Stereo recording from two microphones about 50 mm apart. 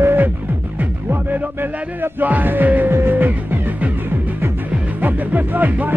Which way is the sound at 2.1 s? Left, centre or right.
Right.